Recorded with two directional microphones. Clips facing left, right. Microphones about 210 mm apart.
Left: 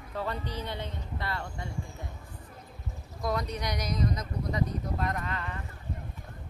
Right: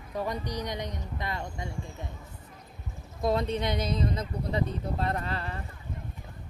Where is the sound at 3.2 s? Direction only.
25° right (ahead or behind).